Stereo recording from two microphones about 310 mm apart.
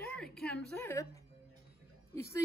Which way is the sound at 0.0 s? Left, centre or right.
Centre.